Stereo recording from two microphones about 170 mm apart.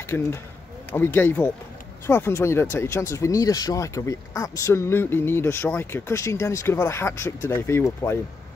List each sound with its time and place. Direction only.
0.0 s speech: 15° left (ahead or behind)